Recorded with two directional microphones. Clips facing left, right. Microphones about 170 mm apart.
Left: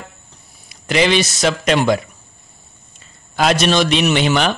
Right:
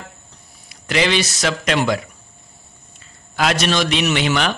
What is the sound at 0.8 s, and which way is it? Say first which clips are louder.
Speech: left 3 dB; 20° left (ahead or behind).